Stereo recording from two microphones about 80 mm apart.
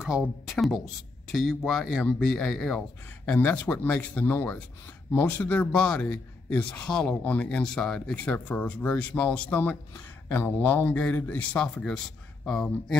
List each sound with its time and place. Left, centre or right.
0.0 s a man's voice: centre
3.3 s a man's voice: left